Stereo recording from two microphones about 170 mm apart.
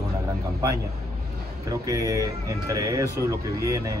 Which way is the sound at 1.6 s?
20° right (ahead or behind).